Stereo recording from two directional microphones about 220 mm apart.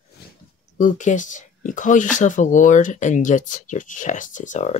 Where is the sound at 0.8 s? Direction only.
35° left (ahead or behind).